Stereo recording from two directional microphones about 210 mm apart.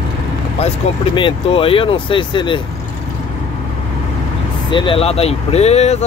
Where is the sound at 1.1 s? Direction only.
25° left (ahead or behind).